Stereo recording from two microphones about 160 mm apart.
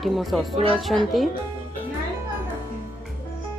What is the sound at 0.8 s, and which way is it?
Speech, centre (ahead or behind).